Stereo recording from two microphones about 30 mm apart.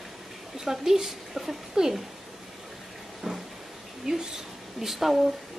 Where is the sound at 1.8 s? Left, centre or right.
Right.